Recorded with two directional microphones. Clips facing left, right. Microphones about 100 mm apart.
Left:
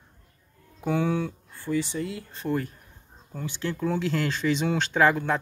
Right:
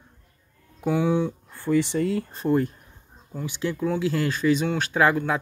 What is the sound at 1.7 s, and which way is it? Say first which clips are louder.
Speech: right 6 dB; 65° right (ahead or behind).